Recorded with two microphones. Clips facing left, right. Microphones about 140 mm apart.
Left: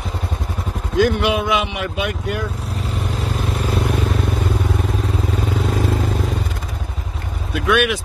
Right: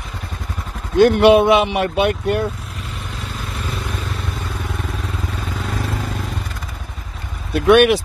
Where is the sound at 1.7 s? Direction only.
30° right (ahead or behind).